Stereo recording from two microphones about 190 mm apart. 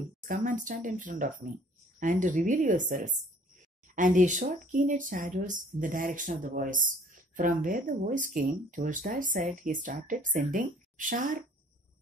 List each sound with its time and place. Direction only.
0.2 s speech: 45° right (ahead or behind)